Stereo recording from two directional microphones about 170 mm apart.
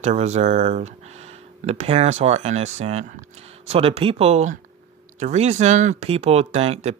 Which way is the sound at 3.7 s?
35° right (ahead or behind).